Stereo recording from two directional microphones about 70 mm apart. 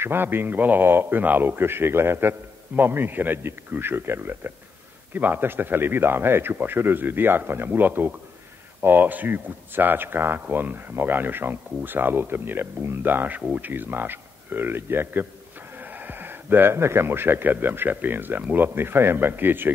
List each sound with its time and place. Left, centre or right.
0.0 s a man's voice: right